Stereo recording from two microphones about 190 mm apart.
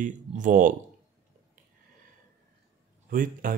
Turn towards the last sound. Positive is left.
turn(degrees=-45)  # may be behind; listen again after turning